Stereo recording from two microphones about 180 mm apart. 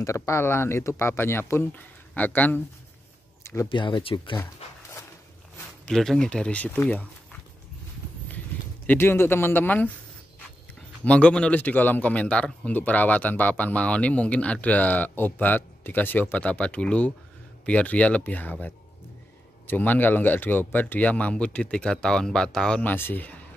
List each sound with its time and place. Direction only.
0.0 s a man's voice: 15° left (ahead or behind)
3.6 s speech: 25° left (ahead or behind)
5.9 s speech: 5° left (ahead or behind)
8.8 s a man's voice: 10° left (ahead or behind)
11.1 s a man's voice: 5° left (ahead or behind)
19.7 s a man's voice: 10° left (ahead or behind)